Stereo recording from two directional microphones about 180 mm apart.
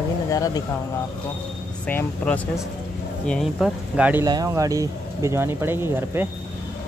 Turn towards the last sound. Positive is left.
turn(degrees=-15)  # may be behind; listen again after turning